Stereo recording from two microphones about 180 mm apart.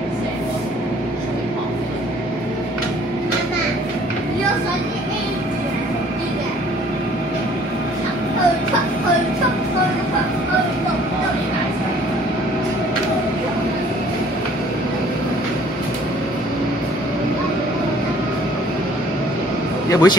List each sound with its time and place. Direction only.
19.9 s a man's voice: 20° left (ahead or behind)